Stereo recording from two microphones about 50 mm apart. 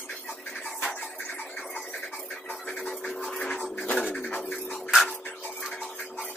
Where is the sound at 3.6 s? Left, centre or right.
Left.